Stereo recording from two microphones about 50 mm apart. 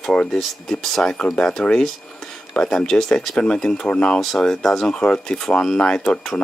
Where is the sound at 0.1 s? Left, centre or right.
Centre.